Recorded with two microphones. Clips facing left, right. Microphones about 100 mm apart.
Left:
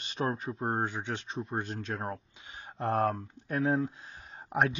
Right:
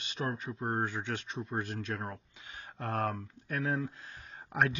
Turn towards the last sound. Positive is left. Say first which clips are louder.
# left 2 dB
turn(degrees=20)  # may be behind; listen again after turning